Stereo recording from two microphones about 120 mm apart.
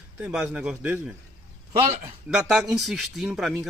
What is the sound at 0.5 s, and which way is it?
Speech, 10° right (ahead or behind).